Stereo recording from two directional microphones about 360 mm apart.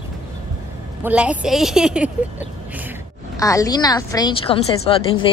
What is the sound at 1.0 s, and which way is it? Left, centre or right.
A woman's voice, centre.